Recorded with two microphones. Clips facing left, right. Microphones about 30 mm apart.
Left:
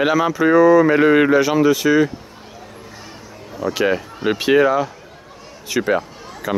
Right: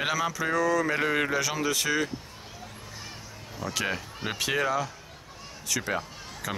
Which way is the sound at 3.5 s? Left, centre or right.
Centre.